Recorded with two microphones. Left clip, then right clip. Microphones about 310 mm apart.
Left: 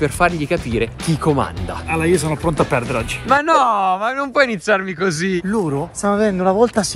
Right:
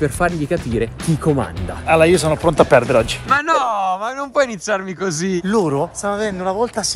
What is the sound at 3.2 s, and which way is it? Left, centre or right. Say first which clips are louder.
Speech: left 2 dB; centre.